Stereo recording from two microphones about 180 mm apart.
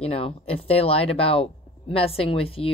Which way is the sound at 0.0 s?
35° left (ahead or behind).